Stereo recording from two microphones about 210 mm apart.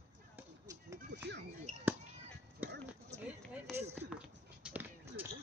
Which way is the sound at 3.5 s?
10° right (ahead or behind).